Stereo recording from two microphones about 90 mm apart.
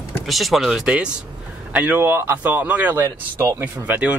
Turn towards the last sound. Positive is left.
turn(degrees=-15)  # may be behind; listen again after turning